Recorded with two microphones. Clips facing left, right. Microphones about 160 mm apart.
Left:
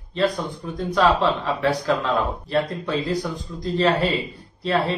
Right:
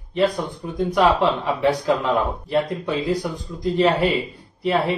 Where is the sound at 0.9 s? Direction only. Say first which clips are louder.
Right 1 dB; 15° right (ahead or behind).